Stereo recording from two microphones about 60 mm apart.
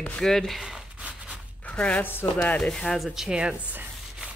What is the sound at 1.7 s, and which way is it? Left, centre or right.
Speech, left.